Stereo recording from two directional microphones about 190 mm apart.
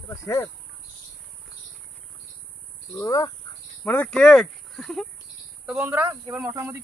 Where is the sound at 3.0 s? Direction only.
20° left (ahead or behind); by 6.8 s 15° right (ahead or behind).